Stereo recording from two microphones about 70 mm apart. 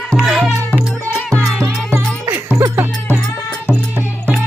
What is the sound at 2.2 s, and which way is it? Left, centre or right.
Music, right.